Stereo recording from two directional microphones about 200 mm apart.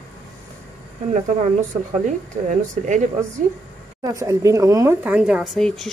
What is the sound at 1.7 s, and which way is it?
Speech, 40° right (ahead or behind).